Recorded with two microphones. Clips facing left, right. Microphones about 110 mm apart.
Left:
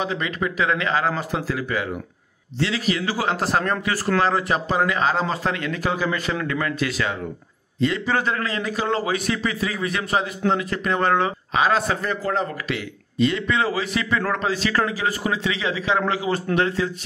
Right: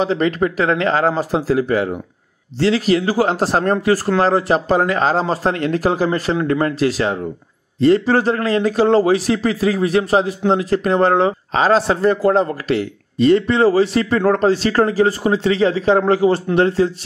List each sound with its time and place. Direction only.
0.0 s speech: 40° right (ahead or behind)